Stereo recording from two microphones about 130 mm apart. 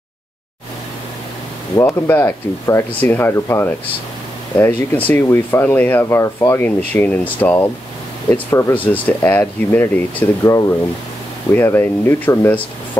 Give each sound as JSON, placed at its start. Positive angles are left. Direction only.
{"t": 1.8, "sound": "speech", "side_deg": 20}